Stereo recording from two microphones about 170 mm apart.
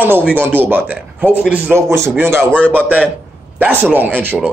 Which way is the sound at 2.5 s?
5° left (ahead or behind).